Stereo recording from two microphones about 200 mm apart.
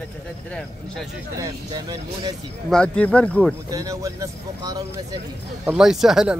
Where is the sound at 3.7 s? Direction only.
15° right (ahead or behind).